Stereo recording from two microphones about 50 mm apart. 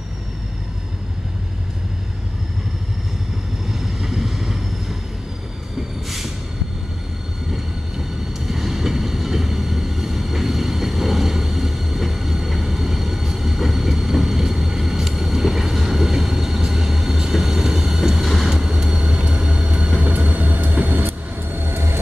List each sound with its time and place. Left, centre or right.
3.7 s vehicle: centre
6.0 s vehicle: centre
8.5 s train: centre
18.2 s vehicle: centre
18.5 s vehicle: centre; by 22.0 s right